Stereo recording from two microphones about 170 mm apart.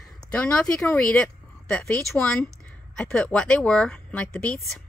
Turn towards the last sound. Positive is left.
turn(degrees=10)  # may be behind; listen again after turning